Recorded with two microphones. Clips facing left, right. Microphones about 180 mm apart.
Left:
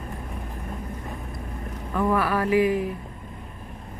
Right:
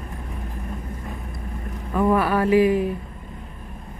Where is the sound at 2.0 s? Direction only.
25° right (ahead or behind).